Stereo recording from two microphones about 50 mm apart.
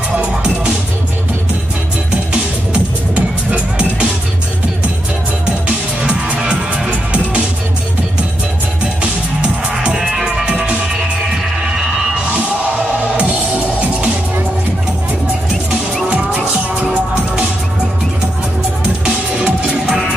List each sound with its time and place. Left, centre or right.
2.7 s music: right
6.0 s music: right
9.8 s music: right
12.3 s music: right
19.0 s music: right